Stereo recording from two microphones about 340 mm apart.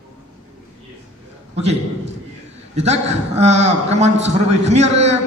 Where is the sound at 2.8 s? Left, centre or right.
Centre.